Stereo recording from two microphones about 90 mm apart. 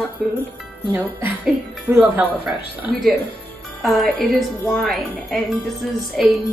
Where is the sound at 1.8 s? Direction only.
20° right (ahead or behind).